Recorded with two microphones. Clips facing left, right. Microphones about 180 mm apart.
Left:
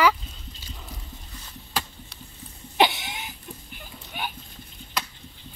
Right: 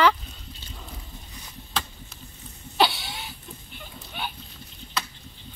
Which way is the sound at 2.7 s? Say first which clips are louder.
Left 2 dB; 20° left (ahead or behind).